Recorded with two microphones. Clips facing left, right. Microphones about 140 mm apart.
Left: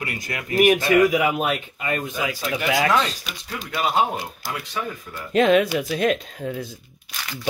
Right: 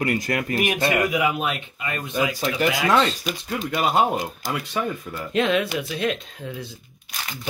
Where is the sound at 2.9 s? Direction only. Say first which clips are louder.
Right 2 dB; 35° right (ahead or behind).